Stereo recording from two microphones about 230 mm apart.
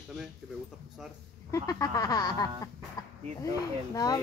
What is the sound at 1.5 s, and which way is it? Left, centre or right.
Speech, centre.